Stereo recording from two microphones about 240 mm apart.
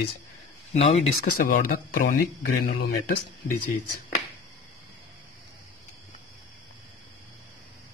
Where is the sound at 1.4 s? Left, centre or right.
Left.